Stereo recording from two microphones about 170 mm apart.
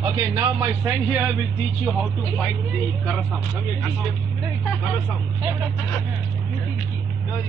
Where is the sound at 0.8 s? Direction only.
10° right (ahead or behind).